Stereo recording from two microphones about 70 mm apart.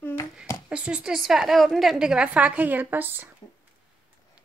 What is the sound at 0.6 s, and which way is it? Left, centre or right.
A woman's voice, centre.